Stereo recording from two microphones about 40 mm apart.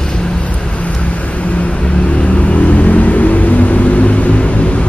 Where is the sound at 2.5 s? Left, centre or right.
Left.